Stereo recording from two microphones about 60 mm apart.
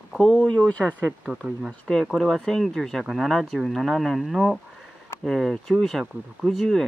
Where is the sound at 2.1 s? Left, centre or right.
Centre.